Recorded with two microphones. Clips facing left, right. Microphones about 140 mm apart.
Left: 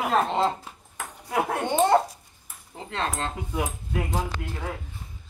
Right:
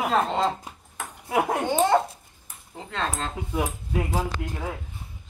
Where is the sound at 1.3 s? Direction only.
15° right (ahead or behind).